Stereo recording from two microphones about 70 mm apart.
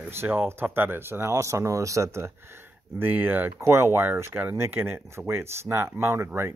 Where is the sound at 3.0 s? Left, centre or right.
Right.